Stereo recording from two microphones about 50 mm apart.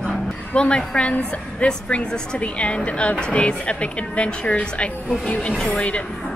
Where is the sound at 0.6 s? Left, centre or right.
Centre.